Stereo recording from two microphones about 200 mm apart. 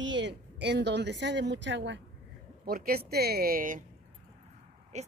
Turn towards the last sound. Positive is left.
turn(degrees=-35)  # may be behind; listen again after turning